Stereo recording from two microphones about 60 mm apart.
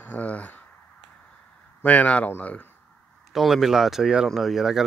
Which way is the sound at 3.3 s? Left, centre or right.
Centre.